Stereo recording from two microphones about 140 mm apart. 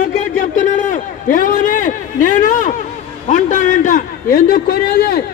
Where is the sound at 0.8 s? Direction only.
70° left (ahead or behind).